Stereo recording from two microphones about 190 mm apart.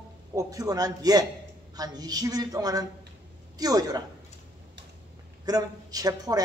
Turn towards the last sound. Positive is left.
turn(degrees=-20)  # may be behind; listen again after turning